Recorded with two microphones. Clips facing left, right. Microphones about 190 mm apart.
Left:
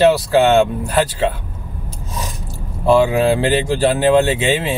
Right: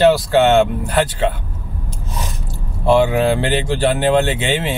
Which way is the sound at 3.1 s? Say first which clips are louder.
Left 2 dB; 35° left (ahead or behind).